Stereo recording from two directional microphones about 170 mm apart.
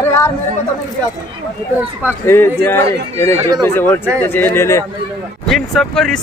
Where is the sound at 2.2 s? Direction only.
15° left (ahead or behind).